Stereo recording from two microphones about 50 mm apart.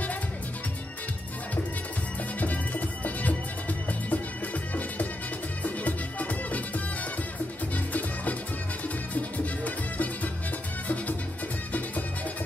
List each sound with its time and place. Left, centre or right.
2.4 s music: left
5.6 s music: left